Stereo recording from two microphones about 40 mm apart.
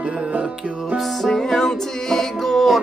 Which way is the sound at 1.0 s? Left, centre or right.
Centre.